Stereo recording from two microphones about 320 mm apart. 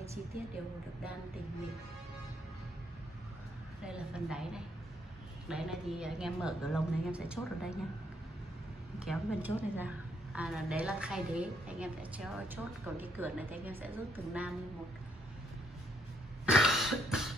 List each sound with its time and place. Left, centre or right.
3.8 s a woman's voice: centre
9.0 s a woman's voice: centre
16.4 s cough: centre